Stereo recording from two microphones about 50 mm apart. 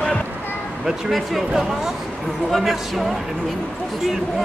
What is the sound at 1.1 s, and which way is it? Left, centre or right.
Speech, centre.